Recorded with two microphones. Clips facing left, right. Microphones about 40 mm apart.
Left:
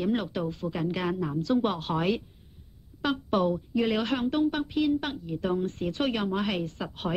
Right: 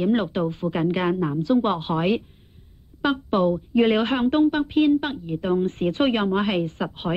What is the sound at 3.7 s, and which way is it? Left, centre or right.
A woman's voice, right.